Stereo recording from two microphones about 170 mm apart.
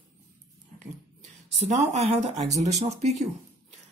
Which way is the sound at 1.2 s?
Centre (ahead or behind).